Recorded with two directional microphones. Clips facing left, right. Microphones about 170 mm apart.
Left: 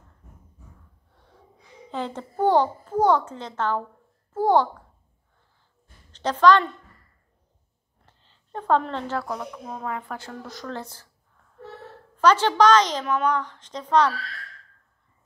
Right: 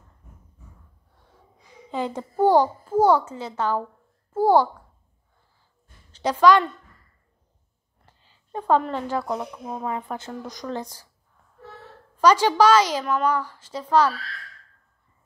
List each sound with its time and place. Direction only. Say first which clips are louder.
1.6 s a child's voice: right 3 dB; 10° right (ahead or behind)
6.1 s a woman's voice: right 1 dB; 10° right (ahead or behind)
8.0 s speech: right 1 dB; 10° right (ahead or behind)
12.2 s speech: right 1 dB; 10° right (ahead or behind)